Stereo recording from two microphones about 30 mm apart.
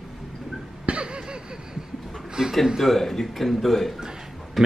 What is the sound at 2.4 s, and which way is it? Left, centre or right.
Speech, centre.